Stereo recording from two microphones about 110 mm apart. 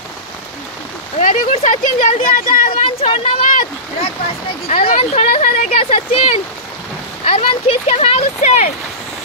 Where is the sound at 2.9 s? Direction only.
60° left (ahead or behind).